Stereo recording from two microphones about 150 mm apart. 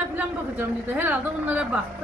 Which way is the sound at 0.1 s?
10° right (ahead or behind).